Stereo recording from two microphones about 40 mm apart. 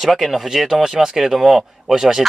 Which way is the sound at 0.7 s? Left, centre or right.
Centre.